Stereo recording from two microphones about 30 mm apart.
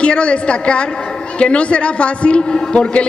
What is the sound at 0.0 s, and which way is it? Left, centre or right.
A man's voice, left.